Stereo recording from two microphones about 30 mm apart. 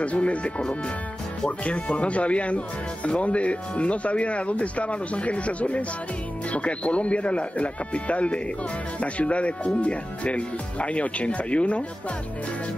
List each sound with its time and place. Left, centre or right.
0.0 s speech: left